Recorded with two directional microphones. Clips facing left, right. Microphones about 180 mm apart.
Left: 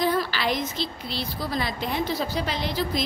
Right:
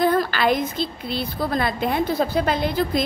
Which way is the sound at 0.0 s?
55° right (ahead or behind).